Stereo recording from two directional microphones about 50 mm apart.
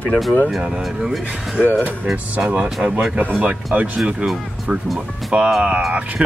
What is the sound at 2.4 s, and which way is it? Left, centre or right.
Speech, centre.